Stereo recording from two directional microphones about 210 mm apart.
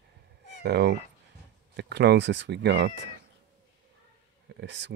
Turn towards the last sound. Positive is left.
turn(degrees=-60)  # may be behind; listen again after turning